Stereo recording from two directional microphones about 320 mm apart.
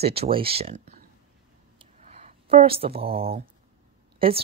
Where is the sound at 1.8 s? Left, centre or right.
Centre.